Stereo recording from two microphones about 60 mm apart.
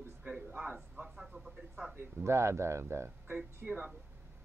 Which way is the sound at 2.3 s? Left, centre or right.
Right.